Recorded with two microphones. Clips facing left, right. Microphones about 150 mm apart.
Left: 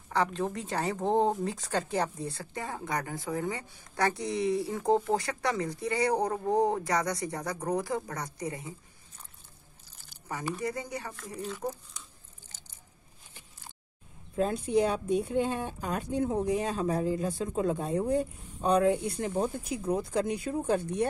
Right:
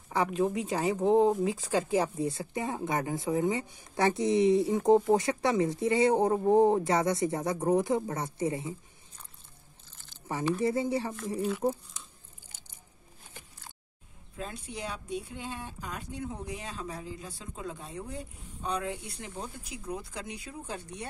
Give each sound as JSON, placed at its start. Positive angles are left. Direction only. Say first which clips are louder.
{"t": 0.3, "sound": "speech", "louder": "right 4 dB", "side_deg": -10}
{"t": 2.1, "sound": "speech", "louder": "right 5 dB", "side_deg": -20}
{"t": 10.6, "sound": "speech", "louder": "right 6 dB", "side_deg": -25}
{"t": 14.3, "sound": "a woman's voice", "louder": "left 13 dB", "side_deg": 45}